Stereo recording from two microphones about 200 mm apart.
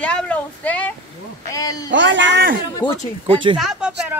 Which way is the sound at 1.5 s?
15° left (ahead or behind).